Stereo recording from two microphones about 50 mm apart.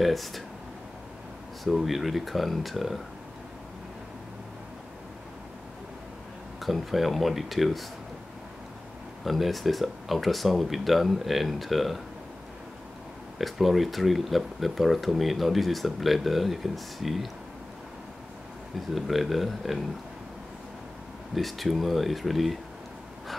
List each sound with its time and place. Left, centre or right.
0.0 s speech: centre
1.6 s speech: centre
6.6 s speech: centre
9.2 s speech: centre
13.4 s speech: centre
18.9 s speech: centre
21.4 s speech: centre